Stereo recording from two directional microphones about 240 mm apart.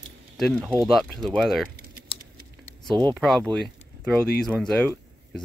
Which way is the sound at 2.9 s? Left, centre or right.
Centre.